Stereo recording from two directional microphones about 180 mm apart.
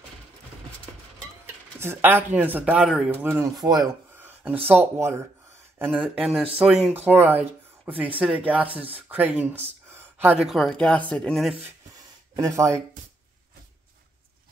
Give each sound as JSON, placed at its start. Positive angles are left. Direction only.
{"t": 1.4, "sound": "speech", "side_deg": -10}
{"t": 4.2, "sound": "a sound", "side_deg": -10}
{"t": 4.6, "sound": "speech", "side_deg": -15}
{"t": 12.4, "sound": "speech", "side_deg": -15}